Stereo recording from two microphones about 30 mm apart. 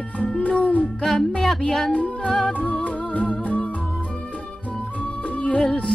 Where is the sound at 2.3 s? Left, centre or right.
Centre.